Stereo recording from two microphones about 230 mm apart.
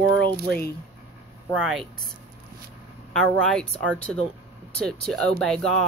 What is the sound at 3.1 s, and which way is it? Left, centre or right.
Speech, centre.